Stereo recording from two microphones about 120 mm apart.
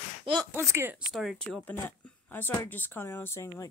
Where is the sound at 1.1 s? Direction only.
Centre (ahead or behind).